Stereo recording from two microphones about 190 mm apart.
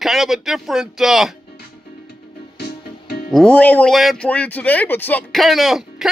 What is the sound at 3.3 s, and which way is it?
A man's voice, 5° left (ahead or behind).